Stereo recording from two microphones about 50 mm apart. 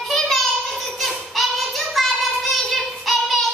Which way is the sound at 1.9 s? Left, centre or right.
Centre.